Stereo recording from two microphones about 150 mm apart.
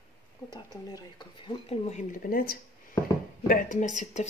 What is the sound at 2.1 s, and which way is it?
Speech, 75° left (ahead or behind).